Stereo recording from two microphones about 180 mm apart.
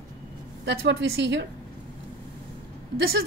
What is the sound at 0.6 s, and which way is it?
Speech, 80° right.